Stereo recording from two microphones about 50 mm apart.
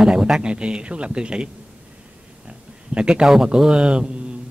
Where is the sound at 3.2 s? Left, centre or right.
Centre.